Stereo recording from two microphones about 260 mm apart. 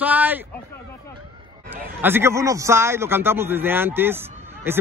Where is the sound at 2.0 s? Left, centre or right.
Centre.